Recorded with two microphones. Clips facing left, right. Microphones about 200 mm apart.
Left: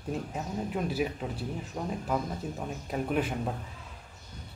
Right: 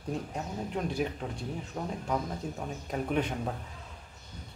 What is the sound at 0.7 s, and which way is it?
Speech, 5° left (ahead or behind).